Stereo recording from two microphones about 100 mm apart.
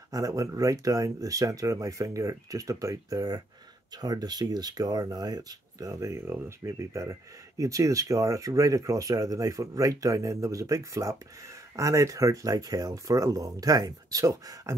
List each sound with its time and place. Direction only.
0.1 s speech: 35° right (ahead or behind)